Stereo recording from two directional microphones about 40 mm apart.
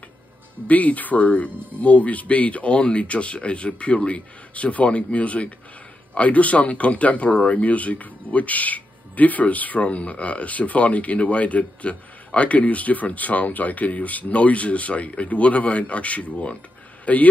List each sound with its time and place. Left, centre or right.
0.7 s speech: left